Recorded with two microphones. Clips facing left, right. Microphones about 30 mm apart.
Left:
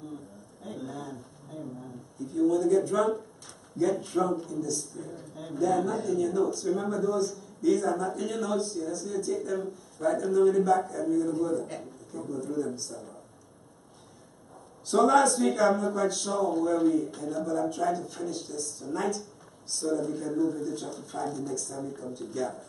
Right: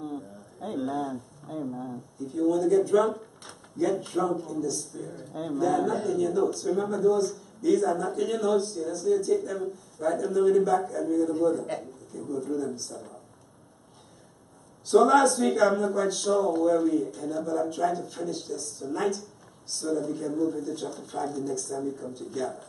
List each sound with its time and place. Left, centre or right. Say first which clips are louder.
0.6 s a sound: right 7 dB; right
1.5 s speech: right 7 dB; right
2.2 s speech: even; centre
14.9 s speech: right 2 dB; centre